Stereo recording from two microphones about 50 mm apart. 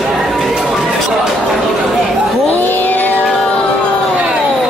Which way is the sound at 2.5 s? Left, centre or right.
Left.